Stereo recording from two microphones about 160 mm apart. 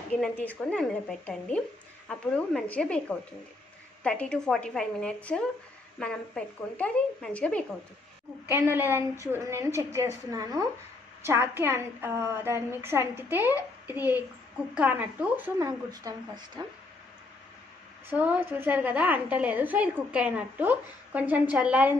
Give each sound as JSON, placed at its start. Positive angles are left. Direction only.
{"t": 0.1, "sound": "speech", "side_deg": 10}
{"t": 8.5, "sound": "a woman's voice", "side_deg": -15}
{"t": 15.9, "sound": "speech", "side_deg": -25}
{"t": 18.1, "sound": "a woman's voice", "side_deg": -10}